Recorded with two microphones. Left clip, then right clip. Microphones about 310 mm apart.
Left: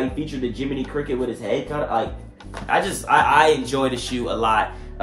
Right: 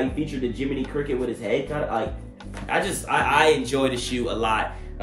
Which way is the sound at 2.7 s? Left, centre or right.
Centre.